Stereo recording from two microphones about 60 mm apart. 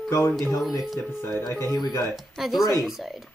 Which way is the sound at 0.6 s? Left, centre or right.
Centre.